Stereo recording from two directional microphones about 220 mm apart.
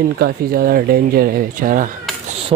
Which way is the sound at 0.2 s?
40° right (ahead or behind).